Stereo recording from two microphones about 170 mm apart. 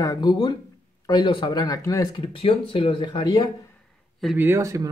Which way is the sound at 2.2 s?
30° left (ahead or behind).